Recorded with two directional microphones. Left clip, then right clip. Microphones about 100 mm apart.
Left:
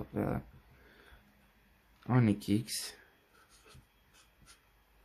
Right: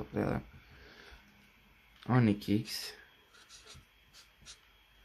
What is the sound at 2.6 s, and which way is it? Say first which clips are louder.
Speech: even; 20° left (ahead or behind).